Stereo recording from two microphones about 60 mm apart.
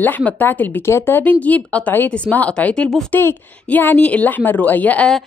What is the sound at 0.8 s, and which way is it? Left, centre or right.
Speech, left.